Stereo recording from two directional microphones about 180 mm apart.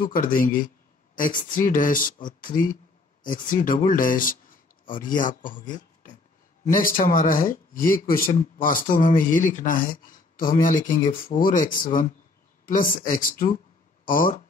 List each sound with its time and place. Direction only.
0.0 s speech: 50° left (ahead or behind)